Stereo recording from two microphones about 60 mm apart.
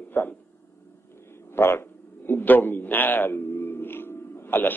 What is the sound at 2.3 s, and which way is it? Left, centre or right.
A man's voice, left.